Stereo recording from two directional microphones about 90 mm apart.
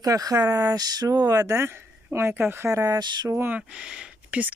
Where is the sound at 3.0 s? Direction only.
55° right (ahead or behind).